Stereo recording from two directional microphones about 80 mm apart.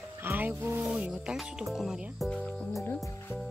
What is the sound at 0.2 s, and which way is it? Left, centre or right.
Music, right.